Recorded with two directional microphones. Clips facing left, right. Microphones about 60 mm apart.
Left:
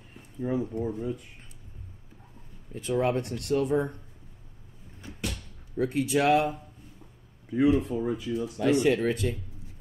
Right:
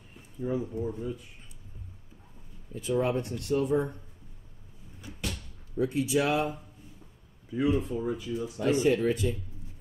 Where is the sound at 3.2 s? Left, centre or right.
Left.